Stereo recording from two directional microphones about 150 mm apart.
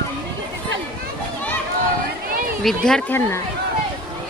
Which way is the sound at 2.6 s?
5° left (ahead or behind).